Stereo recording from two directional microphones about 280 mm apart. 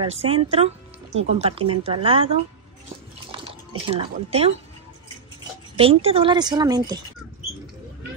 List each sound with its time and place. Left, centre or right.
0.0 s speech: centre
5.8 s a woman's voice: centre